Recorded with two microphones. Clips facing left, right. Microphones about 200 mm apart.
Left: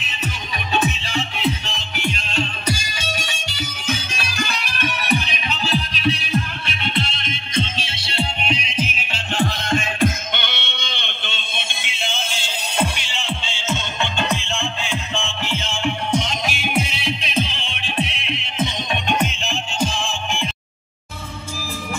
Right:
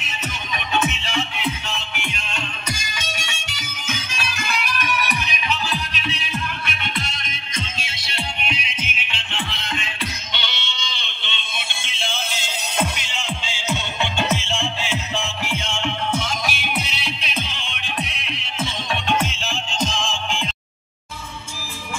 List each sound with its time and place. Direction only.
0.7 s music: 35° left (ahead or behind); by 11.4 s 50° left (ahead or behind)
12.9 s music: centre (ahead or behind)
13.7 s music: 15° right (ahead or behind); by 16.8 s 20° left (ahead or behind)
17.3 s music: 30° left (ahead or behind); by 20.4 s 15° left (ahead or behind)